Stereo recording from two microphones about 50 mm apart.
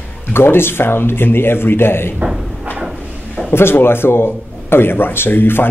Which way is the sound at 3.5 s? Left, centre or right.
Left.